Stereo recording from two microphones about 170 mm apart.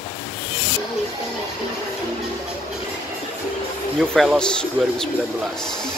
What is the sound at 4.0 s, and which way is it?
Speech, centre (ahead or behind).